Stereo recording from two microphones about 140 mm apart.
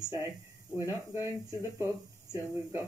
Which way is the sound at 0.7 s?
20° right (ahead or behind).